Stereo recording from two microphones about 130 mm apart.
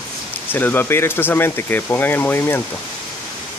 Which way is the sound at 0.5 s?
15° left (ahead or behind).